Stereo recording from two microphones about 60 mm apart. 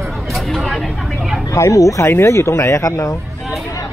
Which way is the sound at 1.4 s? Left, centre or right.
Left.